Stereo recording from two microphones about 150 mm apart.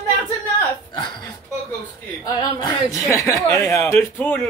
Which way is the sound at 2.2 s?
25° left (ahead or behind).